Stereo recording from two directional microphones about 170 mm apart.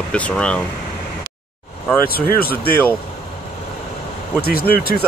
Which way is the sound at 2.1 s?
65° left (ahead or behind).